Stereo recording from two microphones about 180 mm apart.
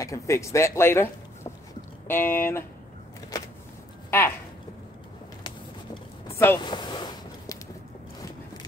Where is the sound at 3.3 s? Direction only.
20° left (ahead or behind).